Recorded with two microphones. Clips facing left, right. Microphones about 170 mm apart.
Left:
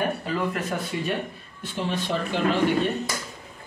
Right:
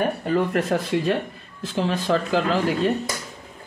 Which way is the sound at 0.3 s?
65° right (ahead or behind).